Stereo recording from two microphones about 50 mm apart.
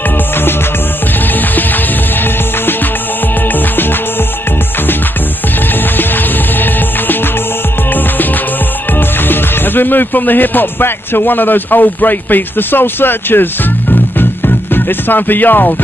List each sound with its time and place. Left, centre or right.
1.5 s music: left
3.5 s music: left
5.9 s music: left
8.9 s speech: left
14.1 s music: left